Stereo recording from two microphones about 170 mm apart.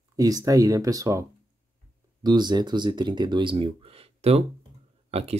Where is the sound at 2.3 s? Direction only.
25° right (ahead or behind).